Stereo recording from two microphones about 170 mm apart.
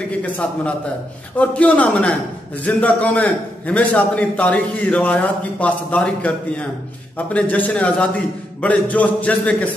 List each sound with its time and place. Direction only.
0.2 s a man's voice: 5° left (ahead or behind)